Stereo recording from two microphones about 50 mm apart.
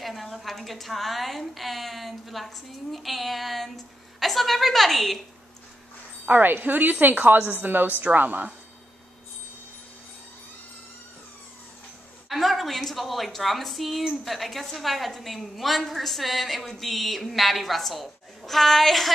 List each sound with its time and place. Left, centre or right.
0.0 s speech: centre
6.2 s a woman's voice: right
12.3 s speech: centre